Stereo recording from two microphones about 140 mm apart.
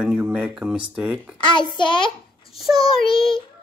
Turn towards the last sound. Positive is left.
turn(degrees=0)  # may be behind; listen again after turning